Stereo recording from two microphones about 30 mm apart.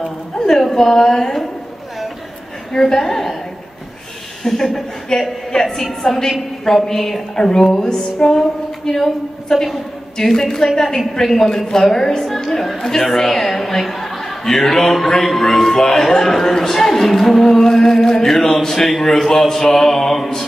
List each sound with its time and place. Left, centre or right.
0.5 s a woman's voice: centre
2.7 s a man's voice: centre
4.4 s a man's voice: centre
7.3 s music: centre
9.5 s a man's voice: centre